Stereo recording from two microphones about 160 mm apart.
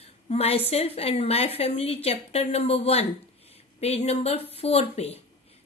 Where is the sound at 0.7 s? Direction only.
40° left (ahead or behind).